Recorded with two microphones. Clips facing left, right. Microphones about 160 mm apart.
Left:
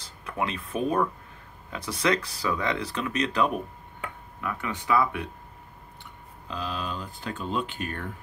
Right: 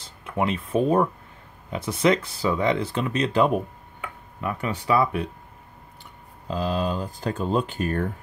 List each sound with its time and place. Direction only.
0.0 s speech: 25° right (ahead or behind)
4.4 s speech: 20° right (ahead or behind)
6.4 s speech: 35° right (ahead or behind)